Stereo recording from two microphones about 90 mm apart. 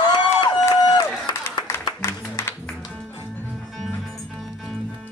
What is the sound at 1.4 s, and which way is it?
Music, 25° left (ahead or behind).